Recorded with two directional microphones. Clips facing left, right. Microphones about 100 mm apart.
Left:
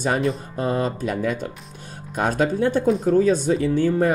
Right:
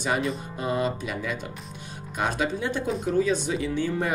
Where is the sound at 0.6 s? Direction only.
40° left (ahead or behind).